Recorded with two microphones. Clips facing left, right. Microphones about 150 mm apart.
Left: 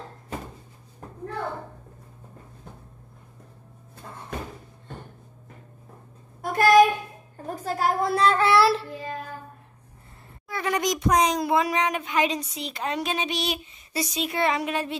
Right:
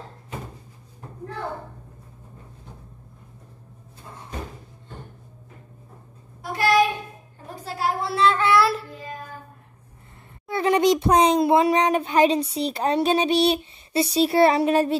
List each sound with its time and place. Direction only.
6.4 s child singing: 45° left (ahead or behind)
7.4 s a sound: 45° left (ahead or behind)
10.5 s a child's voice: 25° right (ahead or behind)